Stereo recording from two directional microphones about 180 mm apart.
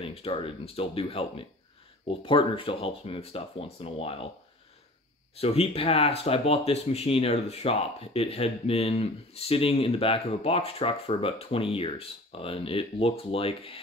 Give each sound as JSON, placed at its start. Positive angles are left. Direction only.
{"t": 0.0, "sound": "speech", "side_deg": 30}
{"t": 5.4, "sound": "speech", "side_deg": 35}